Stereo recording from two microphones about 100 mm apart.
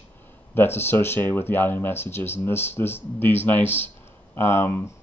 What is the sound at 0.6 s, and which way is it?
Speech, 20° left (ahead or behind).